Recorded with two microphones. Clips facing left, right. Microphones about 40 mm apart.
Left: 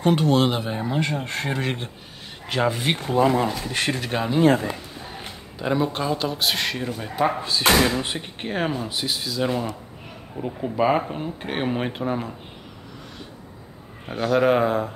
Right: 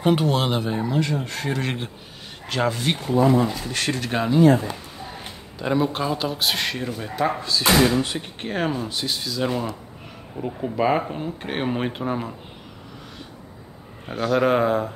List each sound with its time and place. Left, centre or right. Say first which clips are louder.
0.0 s speech: left 1 dB; centre
0.8 s speech: right 1 dB; left
1.6 s speech: even; centre
2.5 s speech: left 1 dB; centre
3.0 s speech: even; left
3.5 s speech: left 1 dB; centre
4.0 s speech: right 1 dB; centre
5.6 s speech: right 1 dB; centre
7.4 s speech: left 1 dB; left
8.2 s speech: even; centre
14.0 s speech: left 1 dB; centre